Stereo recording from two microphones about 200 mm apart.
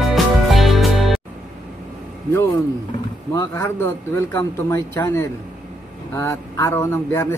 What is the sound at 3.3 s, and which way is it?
Speech, 15° left (ahead or behind).